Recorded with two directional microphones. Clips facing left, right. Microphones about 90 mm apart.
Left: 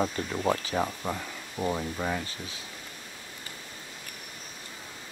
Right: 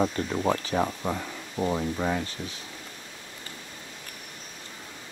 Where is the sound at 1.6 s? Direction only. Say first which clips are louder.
Right 3 dB; 10° right (ahead or behind).